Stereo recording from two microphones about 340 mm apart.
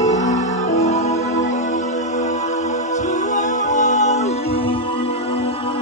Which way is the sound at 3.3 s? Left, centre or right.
Left.